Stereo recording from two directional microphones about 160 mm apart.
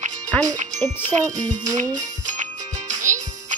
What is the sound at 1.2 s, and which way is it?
Speech, 20° right (ahead or behind).